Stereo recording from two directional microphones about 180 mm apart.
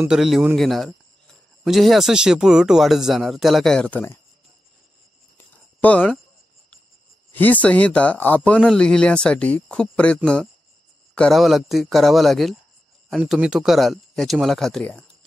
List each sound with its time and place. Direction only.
0.0 s speech: 5° right (ahead or behind)
5.8 s speech: 5° left (ahead or behind)
7.3 s speech: 10° left (ahead or behind)